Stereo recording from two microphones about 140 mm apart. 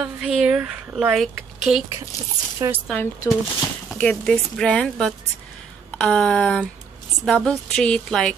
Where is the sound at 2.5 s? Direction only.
20° right (ahead or behind).